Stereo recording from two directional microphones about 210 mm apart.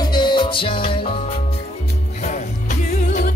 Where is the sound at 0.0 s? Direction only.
20° left (ahead or behind).